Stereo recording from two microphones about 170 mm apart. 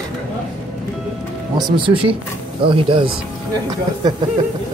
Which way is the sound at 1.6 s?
30° right (ahead or behind).